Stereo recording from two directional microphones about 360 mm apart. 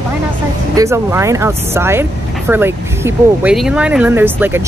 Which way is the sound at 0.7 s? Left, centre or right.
Centre.